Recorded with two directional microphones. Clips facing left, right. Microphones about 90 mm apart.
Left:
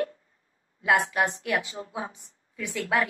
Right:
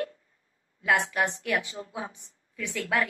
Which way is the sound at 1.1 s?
15° left (ahead or behind).